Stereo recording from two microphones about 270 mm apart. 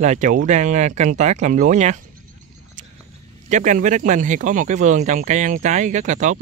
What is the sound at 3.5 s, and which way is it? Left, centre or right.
Speech, right.